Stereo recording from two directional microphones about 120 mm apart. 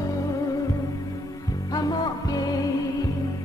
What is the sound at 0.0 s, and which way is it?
Music, 30° left (ahead or behind).